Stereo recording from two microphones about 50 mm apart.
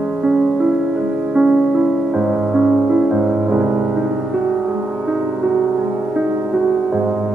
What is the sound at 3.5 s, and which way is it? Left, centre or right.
Music, right.